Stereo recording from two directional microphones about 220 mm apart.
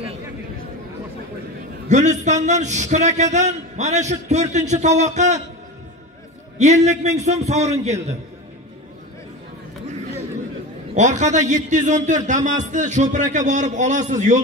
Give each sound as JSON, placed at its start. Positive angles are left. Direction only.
{"t": 1.9, "sound": "a man's voice", "side_deg": -35}
{"t": 6.6, "sound": "a man's voice", "side_deg": -30}
{"t": 11.0, "sound": "a man's voice", "side_deg": -35}